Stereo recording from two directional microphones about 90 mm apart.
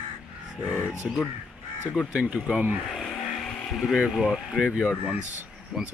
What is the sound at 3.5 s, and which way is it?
Vehicle, 10° left (ahead or behind).